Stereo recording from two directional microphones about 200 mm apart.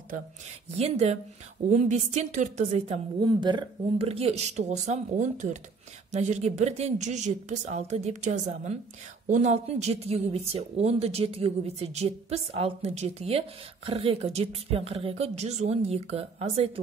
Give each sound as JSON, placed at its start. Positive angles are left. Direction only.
{"t": 0.7, "sound": "speech", "side_deg": -30}
{"t": 3.2, "sound": "speech", "side_deg": -20}